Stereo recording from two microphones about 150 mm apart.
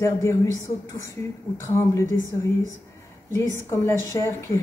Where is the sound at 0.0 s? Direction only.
20° left (ahead or behind).